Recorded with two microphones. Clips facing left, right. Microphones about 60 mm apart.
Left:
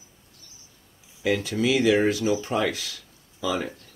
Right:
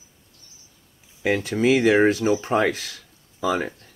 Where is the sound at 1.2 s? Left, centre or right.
Right.